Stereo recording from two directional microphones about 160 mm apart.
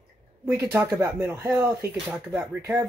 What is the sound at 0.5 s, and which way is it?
Speech, 15° right (ahead or behind).